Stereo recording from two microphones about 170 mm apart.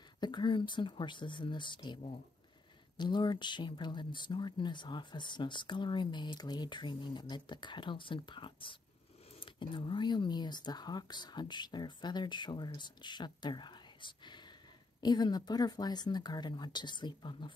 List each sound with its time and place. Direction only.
0.2 s speech: 25° left (ahead or behind)